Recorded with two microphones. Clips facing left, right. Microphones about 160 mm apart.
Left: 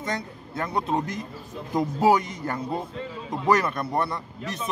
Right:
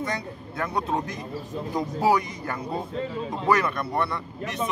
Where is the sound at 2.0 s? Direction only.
25° left (ahead or behind).